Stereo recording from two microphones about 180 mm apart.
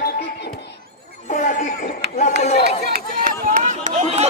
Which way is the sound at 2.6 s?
60° right (ahead or behind).